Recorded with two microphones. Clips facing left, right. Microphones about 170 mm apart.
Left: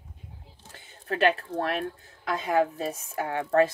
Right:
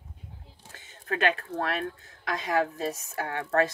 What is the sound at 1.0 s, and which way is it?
Speech, 30° left (ahead or behind).